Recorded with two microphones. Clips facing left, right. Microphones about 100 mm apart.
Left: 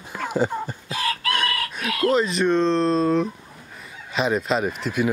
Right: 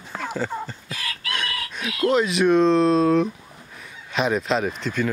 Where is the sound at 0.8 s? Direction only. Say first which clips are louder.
Left 8 dB; 30° left (ahead or behind).